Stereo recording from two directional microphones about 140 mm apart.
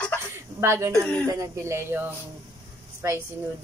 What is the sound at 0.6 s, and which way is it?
Speech, 20° right (ahead or behind).